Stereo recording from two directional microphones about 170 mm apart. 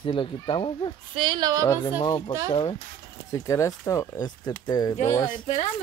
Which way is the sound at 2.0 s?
25° left (ahead or behind).